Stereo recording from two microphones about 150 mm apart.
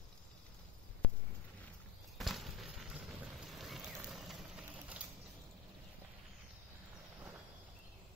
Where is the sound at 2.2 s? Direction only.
Centre (ahead or behind).